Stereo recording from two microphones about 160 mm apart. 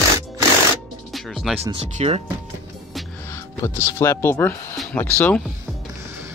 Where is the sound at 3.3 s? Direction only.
20° left (ahead or behind).